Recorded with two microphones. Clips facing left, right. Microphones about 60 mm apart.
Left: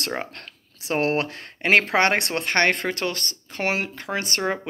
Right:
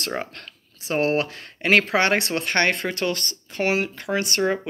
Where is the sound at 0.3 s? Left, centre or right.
Left.